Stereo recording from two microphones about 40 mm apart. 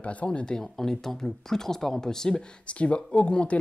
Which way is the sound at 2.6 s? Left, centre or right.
Left.